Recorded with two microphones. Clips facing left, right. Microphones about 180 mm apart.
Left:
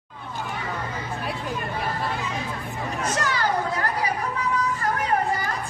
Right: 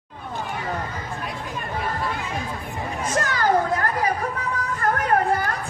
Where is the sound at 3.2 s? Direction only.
50° right (ahead or behind).